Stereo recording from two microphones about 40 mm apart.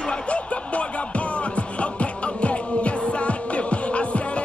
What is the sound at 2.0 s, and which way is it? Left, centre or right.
Music, left.